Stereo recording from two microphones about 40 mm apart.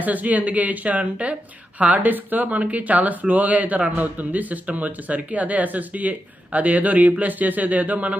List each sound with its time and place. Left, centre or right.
0.0 s a man's voice: right
2.0 s a man's voice: right